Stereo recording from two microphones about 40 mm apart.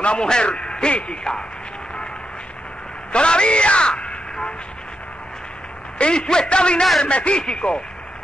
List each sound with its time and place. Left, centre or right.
0.0 s a man's voice: left
3.1 s a man's voice: left
5.9 s a man's voice: left